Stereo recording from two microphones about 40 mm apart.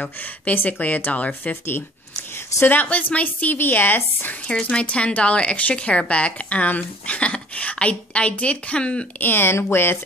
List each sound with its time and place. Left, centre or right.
0.2 s speech: left
2.7 s speech: left
3.5 s a woman's voice: left
4.5 s speech: left
9.2 s speech: left